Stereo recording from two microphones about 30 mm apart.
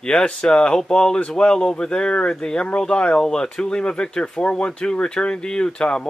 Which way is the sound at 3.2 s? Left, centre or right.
Left.